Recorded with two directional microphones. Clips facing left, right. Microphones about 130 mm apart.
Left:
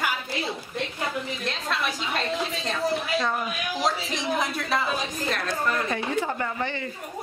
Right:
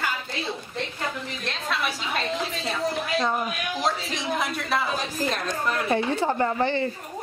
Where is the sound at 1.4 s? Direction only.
Centre (ahead or behind).